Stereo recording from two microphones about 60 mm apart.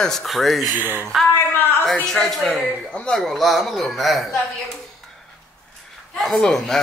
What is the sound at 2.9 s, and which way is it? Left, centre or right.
Speech, centre.